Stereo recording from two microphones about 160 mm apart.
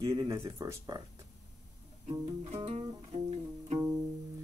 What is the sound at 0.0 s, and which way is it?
Speech, 20° right (ahead or behind).